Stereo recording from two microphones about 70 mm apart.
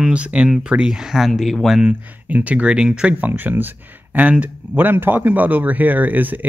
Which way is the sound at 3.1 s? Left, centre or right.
Right.